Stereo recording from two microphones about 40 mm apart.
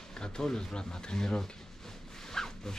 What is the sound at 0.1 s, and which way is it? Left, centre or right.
Speech, centre.